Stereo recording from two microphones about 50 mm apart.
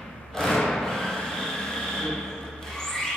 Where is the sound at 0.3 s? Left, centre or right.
Centre.